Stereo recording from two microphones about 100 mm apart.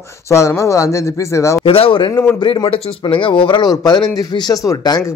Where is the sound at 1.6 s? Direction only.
70° left (ahead or behind).